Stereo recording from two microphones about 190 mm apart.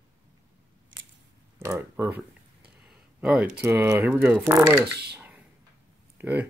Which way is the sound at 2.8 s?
5° right (ahead or behind).